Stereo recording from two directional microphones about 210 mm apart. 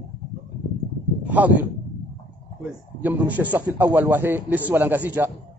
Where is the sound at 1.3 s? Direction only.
5° right (ahead or behind).